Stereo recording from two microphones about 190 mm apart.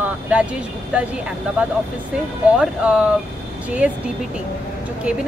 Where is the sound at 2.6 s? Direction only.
5° right (ahead or behind).